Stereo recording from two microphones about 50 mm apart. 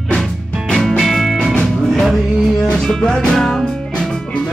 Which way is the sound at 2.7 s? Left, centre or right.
Centre.